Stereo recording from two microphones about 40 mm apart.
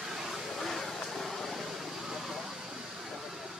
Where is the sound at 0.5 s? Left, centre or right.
Centre.